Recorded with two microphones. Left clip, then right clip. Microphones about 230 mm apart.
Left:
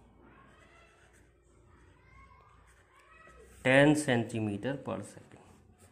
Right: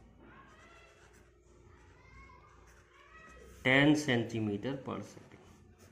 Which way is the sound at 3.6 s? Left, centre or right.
Left.